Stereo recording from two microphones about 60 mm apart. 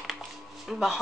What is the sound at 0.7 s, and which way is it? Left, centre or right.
Speech, centre.